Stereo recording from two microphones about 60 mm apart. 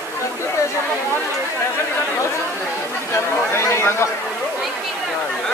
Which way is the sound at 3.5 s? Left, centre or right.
Left.